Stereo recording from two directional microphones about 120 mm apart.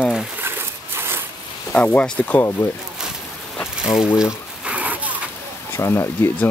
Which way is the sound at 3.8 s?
5° right (ahead or behind).